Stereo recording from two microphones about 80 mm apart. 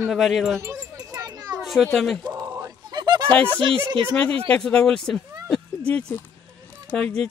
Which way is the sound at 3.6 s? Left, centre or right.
Right.